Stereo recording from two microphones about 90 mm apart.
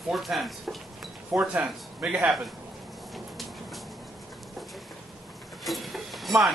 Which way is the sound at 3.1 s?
Centre (ahead or behind).